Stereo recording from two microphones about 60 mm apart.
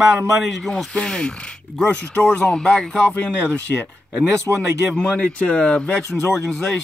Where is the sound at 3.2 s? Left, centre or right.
Left.